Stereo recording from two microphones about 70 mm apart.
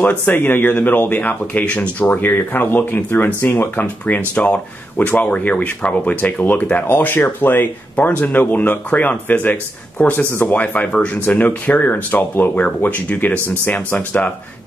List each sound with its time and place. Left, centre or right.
0.0 s speech: left
3.8 s speech: centre